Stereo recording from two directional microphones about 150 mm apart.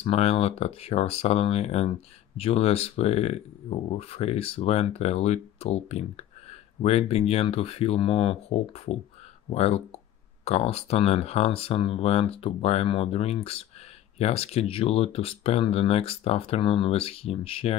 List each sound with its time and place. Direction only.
0.0 s speech: 45° left (ahead or behind)